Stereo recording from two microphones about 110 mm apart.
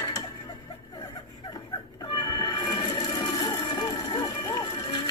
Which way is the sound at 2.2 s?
35° left (ahead or behind).